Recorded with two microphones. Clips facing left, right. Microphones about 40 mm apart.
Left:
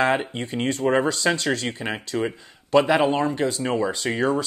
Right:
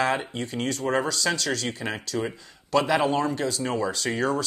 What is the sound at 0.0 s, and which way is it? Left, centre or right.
Speech, left.